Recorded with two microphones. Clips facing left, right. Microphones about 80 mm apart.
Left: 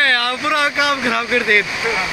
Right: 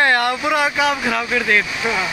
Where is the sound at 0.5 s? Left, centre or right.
Centre.